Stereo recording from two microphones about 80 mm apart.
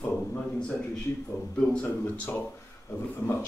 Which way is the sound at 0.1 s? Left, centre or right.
Centre.